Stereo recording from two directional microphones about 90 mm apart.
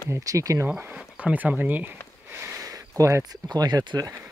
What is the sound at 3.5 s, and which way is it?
Speech, 45° right (ahead or behind).